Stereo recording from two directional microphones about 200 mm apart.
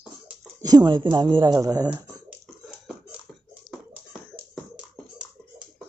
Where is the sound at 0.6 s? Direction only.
20° right (ahead or behind).